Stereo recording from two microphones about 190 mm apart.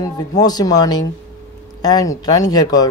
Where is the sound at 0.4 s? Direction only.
20° left (ahead or behind).